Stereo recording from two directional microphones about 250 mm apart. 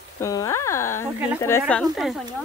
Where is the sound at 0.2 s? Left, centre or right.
Centre.